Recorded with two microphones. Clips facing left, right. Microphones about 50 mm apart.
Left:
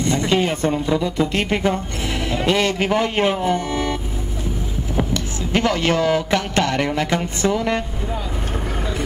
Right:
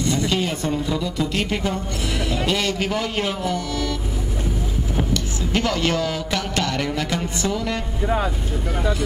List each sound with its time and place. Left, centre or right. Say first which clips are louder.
0.0 s speech: left 3 dB; left